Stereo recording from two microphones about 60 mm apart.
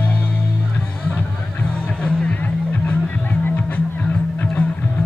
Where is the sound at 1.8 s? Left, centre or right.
Left.